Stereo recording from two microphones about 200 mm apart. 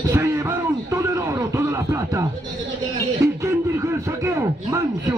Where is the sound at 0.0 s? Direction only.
15° right (ahead or behind).